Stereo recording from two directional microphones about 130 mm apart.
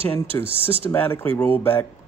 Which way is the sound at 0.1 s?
15° left (ahead or behind).